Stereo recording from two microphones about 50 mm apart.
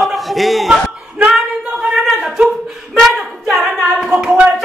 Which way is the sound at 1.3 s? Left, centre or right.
Centre.